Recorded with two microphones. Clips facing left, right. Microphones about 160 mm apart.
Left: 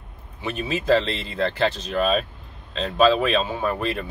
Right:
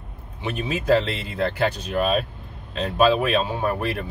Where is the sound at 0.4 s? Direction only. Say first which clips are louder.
Even; 10° right (ahead or behind).